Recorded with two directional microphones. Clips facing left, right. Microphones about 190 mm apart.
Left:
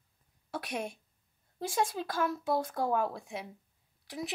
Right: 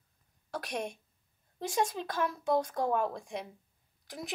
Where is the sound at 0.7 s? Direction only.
5° left (ahead or behind).